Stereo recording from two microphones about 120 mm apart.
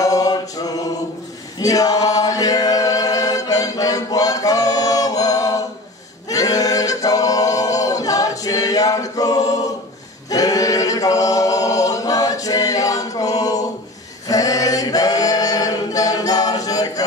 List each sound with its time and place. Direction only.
0.0 s choir: 30° left (ahead or behind)
6.2 s a capella: 30° left (ahead or behind)